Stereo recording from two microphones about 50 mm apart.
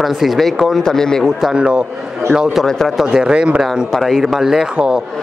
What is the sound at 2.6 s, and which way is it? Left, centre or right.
Speech, centre.